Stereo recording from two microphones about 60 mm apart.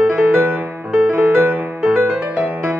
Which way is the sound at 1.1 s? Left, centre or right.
Right.